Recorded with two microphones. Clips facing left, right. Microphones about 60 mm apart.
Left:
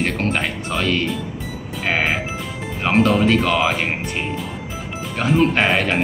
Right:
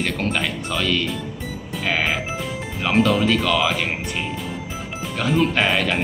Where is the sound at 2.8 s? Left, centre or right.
Left.